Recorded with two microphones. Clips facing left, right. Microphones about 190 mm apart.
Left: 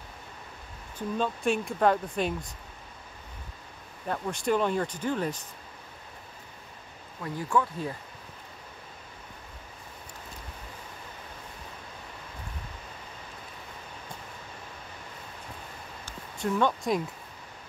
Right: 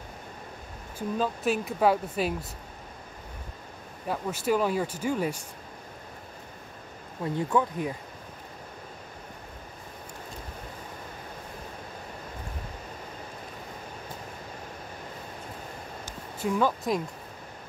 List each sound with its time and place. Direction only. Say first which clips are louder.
0.9 s speech: right 1 dB; 5° right (ahead or behind)
4.1 s speech: right 1 dB; 5° right (ahead or behind)
7.3 s speech: right 1 dB; 20° right (ahead or behind)
16.3 s speech: right 1 dB; 5° right (ahead or behind)